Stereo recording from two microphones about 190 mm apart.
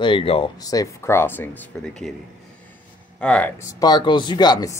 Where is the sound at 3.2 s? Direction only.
5° left (ahead or behind).